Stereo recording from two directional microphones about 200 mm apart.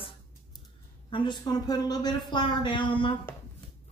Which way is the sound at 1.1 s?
25° left (ahead or behind).